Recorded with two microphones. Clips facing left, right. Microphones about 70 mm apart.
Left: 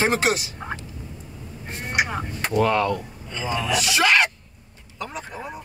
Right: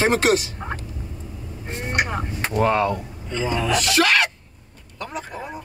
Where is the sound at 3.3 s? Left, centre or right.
Right.